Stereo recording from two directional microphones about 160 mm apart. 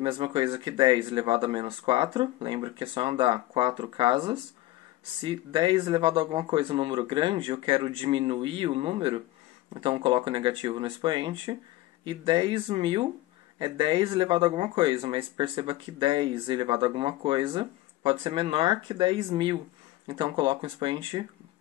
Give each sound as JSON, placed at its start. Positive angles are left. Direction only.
{"t": 0.0, "sound": "speech", "side_deg": -30}